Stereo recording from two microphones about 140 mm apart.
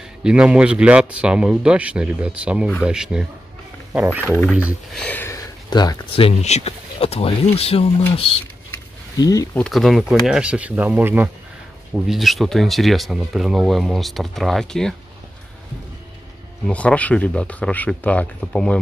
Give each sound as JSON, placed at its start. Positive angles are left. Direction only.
{"t": 0.2, "sound": "speech", "side_deg": -5}
{"t": 4.9, "sound": "speech", "side_deg": 10}
{"t": 5.3, "sound": "speech", "side_deg": 30}
{"t": 9.2, "sound": "speech", "side_deg": 25}
{"t": 9.6, "sound": "speech", "side_deg": 0}
{"t": 11.9, "sound": "speech", "side_deg": 0}
{"t": 16.6, "sound": "speech", "side_deg": 10}